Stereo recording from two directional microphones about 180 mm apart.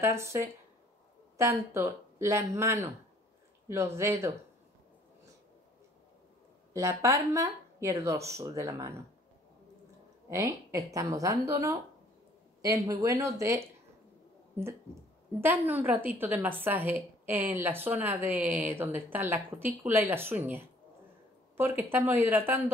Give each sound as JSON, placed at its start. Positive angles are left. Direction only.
{"t": 0.0, "sound": "a woman's voice", "side_deg": -15}
{"t": 6.7, "sound": "a woman's voice", "side_deg": -15}
{"t": 10.3, "sound": "a woman's voice", "side_deg": -15}